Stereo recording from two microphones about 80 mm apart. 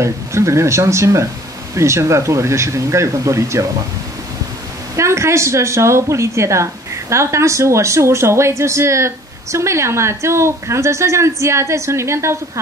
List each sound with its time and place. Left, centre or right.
0.0 s a woman's voice: right
4.9 s a woman's voice: right